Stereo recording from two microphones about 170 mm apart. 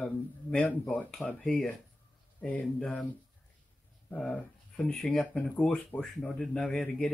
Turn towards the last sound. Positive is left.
turn(degrees=0)  # may be behind; listen again after turning